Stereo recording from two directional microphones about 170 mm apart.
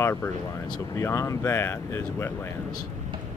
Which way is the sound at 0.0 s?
15° left (ahead or behind).